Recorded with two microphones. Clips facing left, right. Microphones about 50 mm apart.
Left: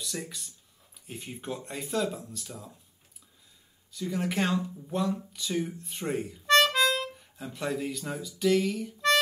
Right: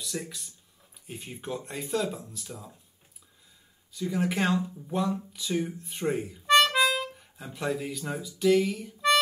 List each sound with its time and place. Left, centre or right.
0.0 s speech: centre
3.9 s speech: centre